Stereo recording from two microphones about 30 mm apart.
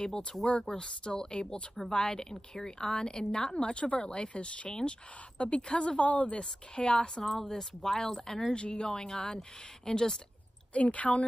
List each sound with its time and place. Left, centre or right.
0.0 s a woman's voice: left
4.6 s a woman's voice: left
5.4 s speech: left
6.0 s a woman's voice: left
6.7 s speech: left
7.2 s speech: centre
8.5 s a woman's voice: left
10.7 s a woman's voice: left